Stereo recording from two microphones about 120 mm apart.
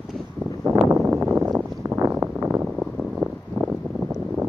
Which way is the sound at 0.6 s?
30° right (ahead or behind).